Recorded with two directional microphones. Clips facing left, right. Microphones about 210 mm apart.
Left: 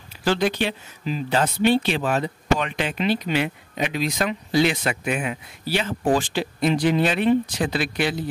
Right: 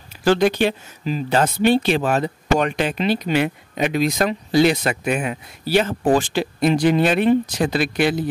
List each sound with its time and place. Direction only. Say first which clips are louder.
0.2 s speech: right 5 dB; 45° right (ahead or behind)